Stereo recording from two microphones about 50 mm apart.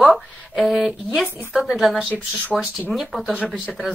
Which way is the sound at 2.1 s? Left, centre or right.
Right.